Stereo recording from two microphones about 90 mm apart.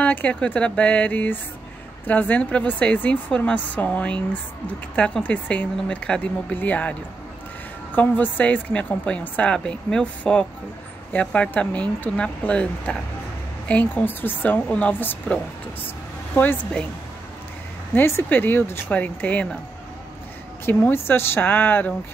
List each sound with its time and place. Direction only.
0.0 s a woman's voice: 15° left (ahead or behind)
17.9 s a woman's voice: 25° left (ahead or behind)
20.6 s a woman's voice: 25° left (ahead or behind)